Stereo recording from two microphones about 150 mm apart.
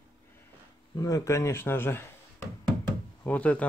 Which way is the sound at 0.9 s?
25° left (ahead or behind).